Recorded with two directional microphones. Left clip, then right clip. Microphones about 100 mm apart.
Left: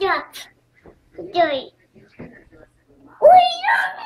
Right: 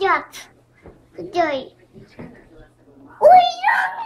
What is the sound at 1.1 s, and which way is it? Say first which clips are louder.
Speech: left 2 dB; 25° right (ahead or behind).